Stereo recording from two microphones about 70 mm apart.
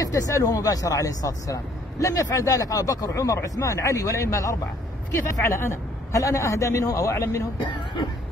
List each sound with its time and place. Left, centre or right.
0.0 s speech: left